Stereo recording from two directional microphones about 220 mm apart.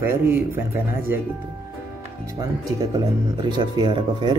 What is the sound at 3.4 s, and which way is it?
Speech, 20° right (ahead or behind).